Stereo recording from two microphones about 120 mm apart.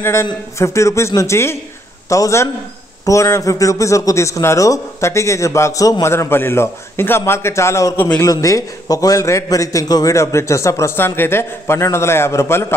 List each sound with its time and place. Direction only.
0.0 s a man's voice: 20° left (ahead or behind)